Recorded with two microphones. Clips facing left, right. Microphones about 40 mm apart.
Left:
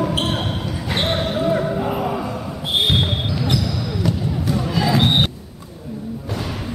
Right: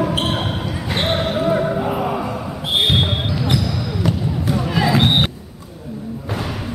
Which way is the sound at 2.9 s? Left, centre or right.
Centre.